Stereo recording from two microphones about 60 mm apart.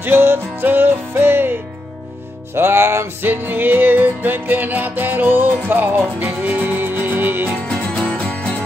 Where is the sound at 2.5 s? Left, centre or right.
Right.